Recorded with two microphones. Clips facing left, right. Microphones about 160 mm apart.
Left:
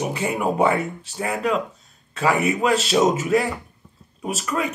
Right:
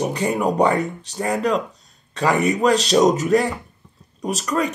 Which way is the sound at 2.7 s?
5° left (ahead or behind).